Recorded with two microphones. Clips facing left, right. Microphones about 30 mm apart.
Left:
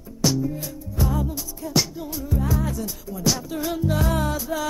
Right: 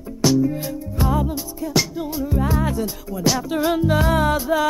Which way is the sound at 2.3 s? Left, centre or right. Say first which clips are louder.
Right 4 dB; right.